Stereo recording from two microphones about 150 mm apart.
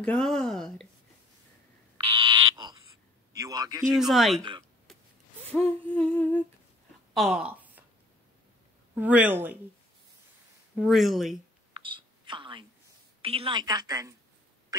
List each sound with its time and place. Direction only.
0.0 s speech: 5° left (ahead or behind)
2.0 s frog: 35° right (ahead or behind)
3.3 s a woman's voice: 25° right (ahead or behind)
4.0 s speech: centre (ahead or behind)
4.4 s speech: 35° right (ahead or behind)
5.5 s humming: 10° left (ahead or behind)
7.2 s speech: 5° right (ahead or behind)
8.9 s a woman's voice: 10° right (ahead or behind)
10.8 s speech: centre (ahead or behind)
11.7 s a sound: 35° right (ahead or behind)
13.2 s a woman's voice: 40° right (ahead or behind)
14.7 s a sound: 25° right (ahead or behind)